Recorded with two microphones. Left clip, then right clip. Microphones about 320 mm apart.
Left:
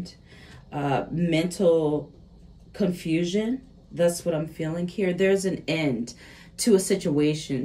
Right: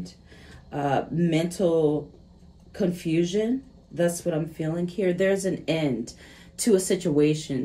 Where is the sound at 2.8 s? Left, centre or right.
Centre.